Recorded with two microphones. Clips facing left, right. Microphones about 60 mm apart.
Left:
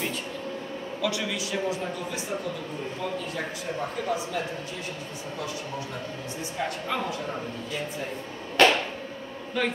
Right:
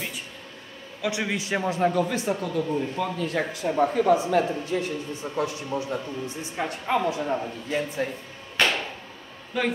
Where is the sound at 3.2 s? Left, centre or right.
Right.